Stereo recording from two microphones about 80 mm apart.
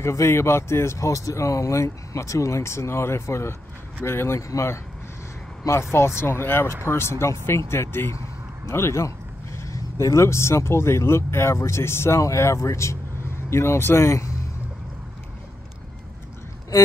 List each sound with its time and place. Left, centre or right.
0.0 s speech: left
14.0 s speech: left